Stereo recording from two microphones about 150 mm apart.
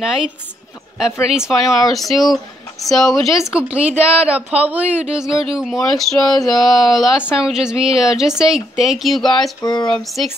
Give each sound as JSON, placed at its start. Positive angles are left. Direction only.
{"t": 0.0, "sound": "speech", "side_deg": -5}
{"t": 1.3, "sound": "speech", "side_deg": -5}
{"t": 9.6, "sound": "speech", "side_deg": 30}
{"t": 9.9, "sound": "speech", "side_deg": 0}